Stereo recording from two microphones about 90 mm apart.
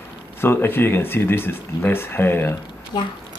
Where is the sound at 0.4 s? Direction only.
25° left (ahead or behind).